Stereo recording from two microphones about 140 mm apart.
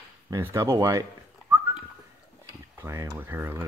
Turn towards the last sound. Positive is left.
turn(degrees=-15)  # may be behind; listen again after turning